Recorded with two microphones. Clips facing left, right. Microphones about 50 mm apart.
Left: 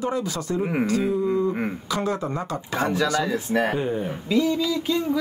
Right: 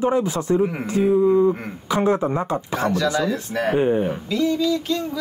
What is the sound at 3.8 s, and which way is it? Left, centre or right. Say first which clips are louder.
Speech: right 7 dB; right.